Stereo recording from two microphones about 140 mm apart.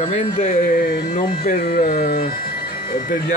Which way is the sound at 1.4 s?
90° left.